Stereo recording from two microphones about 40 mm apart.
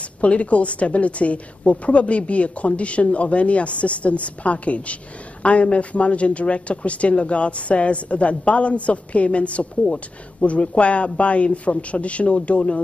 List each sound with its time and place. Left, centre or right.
0.2 s speech: left